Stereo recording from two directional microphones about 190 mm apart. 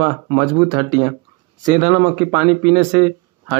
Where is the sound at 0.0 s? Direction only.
25° right (ahead or behind).